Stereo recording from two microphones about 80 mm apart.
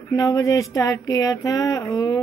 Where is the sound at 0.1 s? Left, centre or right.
Left.